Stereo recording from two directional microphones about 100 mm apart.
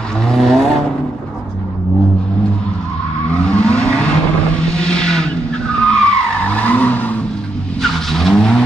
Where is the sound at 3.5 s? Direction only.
10° left (ahead or behind).